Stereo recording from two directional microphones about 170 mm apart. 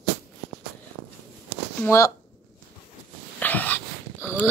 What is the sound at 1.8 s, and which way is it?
Speech, 15° left (ahead or behind).